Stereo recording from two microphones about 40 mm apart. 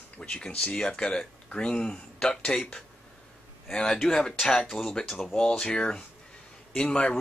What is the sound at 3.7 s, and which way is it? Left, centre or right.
Speech, centre.